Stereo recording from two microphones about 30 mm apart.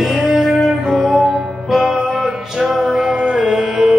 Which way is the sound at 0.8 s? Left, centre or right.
Centre.